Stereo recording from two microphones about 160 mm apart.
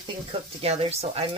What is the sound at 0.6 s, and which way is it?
Speech, 40° right (ahead or behind).